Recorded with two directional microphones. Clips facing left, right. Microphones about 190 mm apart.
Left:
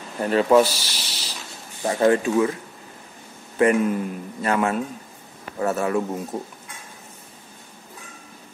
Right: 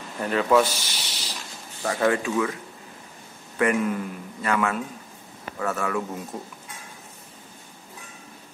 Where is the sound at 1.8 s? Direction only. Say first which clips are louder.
Left 4 dB; 25° left (ahead or behind).